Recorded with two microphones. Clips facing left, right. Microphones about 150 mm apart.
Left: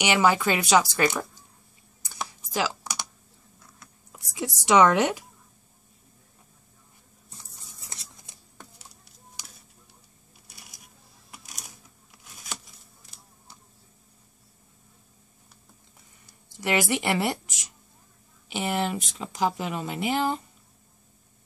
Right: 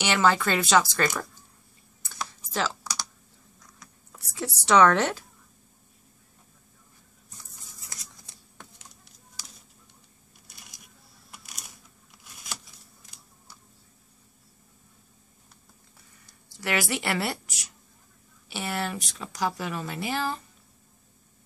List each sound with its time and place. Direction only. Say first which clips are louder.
0.0 s speech: left 1 dB; 15° left (ahead or behind)
2.0 s computer keyboard: left 1 dB; 15° left (ahead or behind)
2.8 s typing: left 1 dB; 20° left (ahead or behind)
4.1 s speech: left 1 dB; 15° left (ahead or behind)
7.8 s a sound: left 1 dB; 30° left (ahead or behind)
11.3 s a sound: left 1 dB; centre (ahead or behind)
16.5 s speech: left 3 dB; 20° left (ahead or behind)
18.5 s speech: left 4 dB; 15° left (ahead or behind)